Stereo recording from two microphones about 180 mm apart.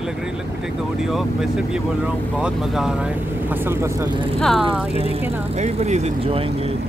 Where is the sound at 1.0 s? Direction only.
Centre (ahead or behind).